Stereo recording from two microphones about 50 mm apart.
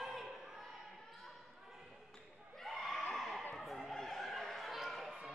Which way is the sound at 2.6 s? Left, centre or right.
Centre.